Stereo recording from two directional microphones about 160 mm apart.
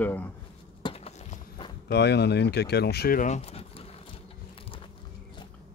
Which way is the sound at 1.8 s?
90° left.